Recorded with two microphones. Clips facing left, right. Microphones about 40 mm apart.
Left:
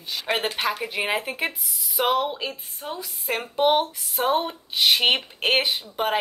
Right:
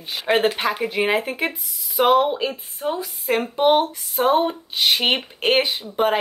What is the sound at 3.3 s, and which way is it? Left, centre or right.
Speech, centre.